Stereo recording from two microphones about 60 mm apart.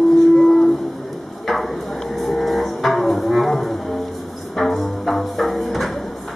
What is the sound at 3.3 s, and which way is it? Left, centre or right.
Music, centre.